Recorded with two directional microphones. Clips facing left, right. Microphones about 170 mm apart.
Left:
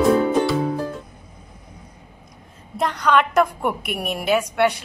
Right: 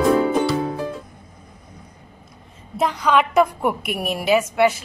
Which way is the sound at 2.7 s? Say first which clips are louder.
Right 1 dB; 5° right (ahead or behind).